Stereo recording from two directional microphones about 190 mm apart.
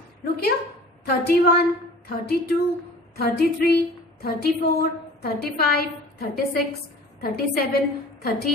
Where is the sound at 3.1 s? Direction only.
55° left (ahead or behind).